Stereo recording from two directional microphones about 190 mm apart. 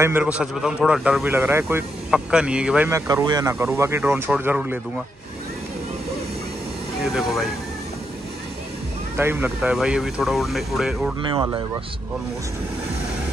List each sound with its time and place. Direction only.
0.0 s speech: 10° right (ahead or behind)
3.1 s speech: 20° right (ahead or behind)
7.2 s speech: centre (ahead or behind)
9.1 s speech: 10° right (ahead or behind)